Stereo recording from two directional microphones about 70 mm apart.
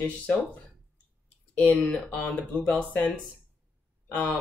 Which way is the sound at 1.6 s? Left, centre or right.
Centre.